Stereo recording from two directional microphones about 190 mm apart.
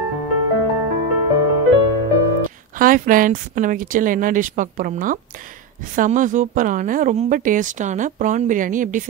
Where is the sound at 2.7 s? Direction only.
45° right (ahead or behind).